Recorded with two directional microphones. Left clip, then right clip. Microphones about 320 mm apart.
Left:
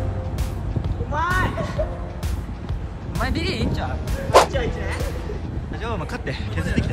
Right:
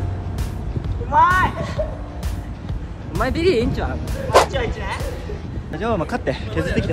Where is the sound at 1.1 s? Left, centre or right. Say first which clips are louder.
Right 8 dB; centre.